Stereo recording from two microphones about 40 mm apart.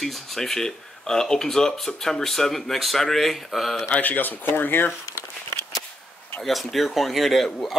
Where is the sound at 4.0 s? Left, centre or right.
Left.